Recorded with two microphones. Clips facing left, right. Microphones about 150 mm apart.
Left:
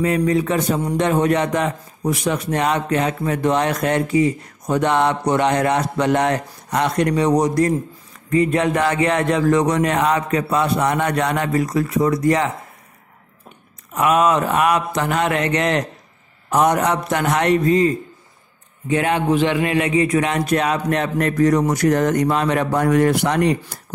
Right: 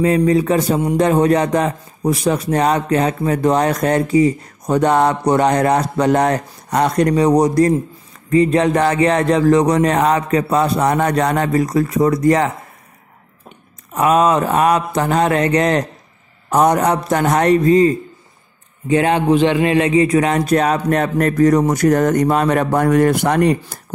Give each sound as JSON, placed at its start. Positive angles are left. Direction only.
{"t": 0.0, "sound": "speech", "side_deg": -35}
{"t": 13.9, "sound": "a man's voice", "side_deg": -35}